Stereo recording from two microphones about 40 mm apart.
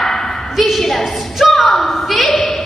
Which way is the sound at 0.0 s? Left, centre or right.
Centre.